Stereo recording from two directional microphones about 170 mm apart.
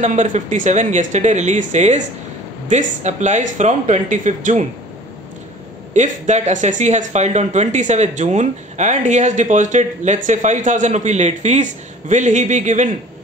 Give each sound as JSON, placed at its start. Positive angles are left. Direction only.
{"t": 0.0, "sound": "speech", "side_deg": -45}
{"t": 5.9, "sound": "speech", "side_deg": -45}